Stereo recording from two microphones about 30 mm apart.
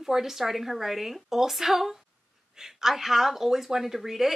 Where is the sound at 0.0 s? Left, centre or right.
Centre.